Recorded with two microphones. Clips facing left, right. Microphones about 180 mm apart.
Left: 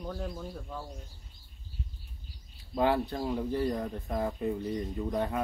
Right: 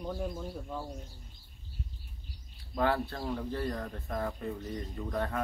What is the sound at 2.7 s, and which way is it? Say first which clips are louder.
Speech: left 3 dB; 15° left (ahead or behind).